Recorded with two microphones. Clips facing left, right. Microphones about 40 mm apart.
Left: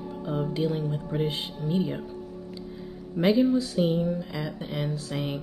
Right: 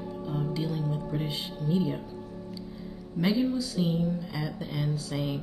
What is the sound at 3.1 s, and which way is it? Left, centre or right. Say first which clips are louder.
Speech: left 5 dB; left.